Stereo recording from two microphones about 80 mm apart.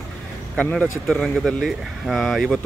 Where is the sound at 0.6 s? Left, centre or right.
Centre.